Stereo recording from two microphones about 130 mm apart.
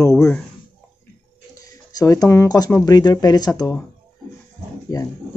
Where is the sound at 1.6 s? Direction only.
30° left (ahead or behind).